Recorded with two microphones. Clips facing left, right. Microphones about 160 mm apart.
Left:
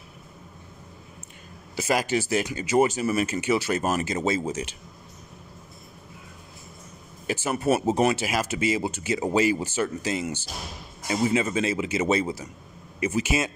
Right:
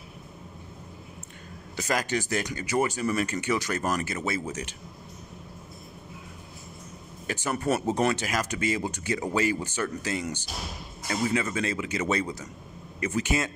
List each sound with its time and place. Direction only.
1.8 s speech: 20° left (ahead or behind)
7.4 s speech: 20° left (ahead or behind)